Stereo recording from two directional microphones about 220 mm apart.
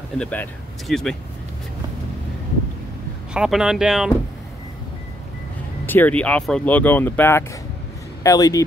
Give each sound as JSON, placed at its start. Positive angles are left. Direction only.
{"t": 0.2, "sound": "speech", "side_deg": 5}
{"t": 3.3, "sound": "speech", "side_deg": 0}
{"t": 5.9, "sound": "speech", "side_deg": 10}